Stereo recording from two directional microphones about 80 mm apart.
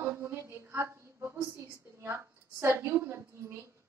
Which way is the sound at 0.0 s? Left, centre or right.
Right.